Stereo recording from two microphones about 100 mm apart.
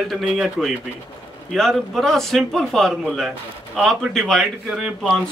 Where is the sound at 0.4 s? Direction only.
Centre (ahead or behind).